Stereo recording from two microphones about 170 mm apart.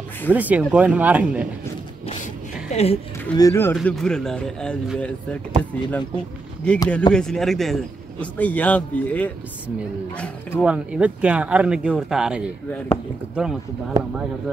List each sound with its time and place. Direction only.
0.3 s speech: 10° right (ahead or behind)
2.7 s a woman's voice: 40° left (ahead or behind)
3.3 s a man's voice: 15° left (ahead or behind)
3.7 s a man's voice: centre (ahead or behind)
10.6 s speech: 5° right (ahead or behind)
12.7 s a man's voice: 15° left (ahead or behind)
13.3 s speech: centre (ahead or behind)